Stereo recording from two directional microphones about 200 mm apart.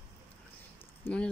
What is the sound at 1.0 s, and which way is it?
Speech, 5° left (ahead or behind).